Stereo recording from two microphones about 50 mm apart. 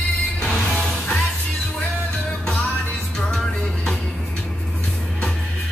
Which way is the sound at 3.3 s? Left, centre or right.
Centre.